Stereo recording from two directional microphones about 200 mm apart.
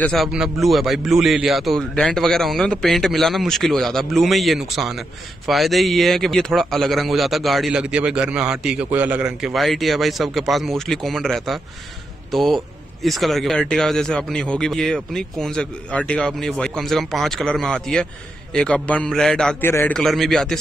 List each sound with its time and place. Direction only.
0.0 s a man's voice: centre (ahead or behind)